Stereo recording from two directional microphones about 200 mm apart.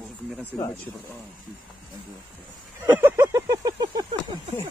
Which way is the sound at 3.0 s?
15° right (ahead or behind).